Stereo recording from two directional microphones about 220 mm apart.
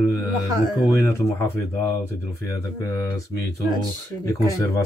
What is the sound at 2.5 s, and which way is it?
Speech, 15° left (ahead or behind).